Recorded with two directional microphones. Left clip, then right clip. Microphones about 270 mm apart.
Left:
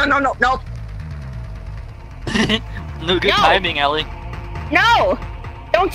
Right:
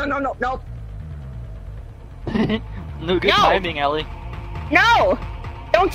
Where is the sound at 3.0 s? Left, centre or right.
Left.